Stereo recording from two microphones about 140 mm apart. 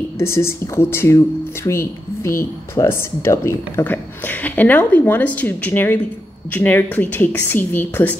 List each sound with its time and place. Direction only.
0.2 s speech: 20° left (ahead or behind)